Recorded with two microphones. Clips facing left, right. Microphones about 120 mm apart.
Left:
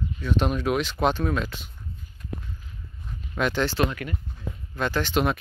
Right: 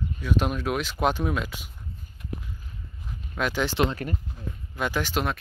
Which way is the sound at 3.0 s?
5° right (ahead or behind).